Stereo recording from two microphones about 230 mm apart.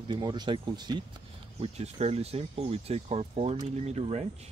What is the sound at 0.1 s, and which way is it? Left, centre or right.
Speech, centre.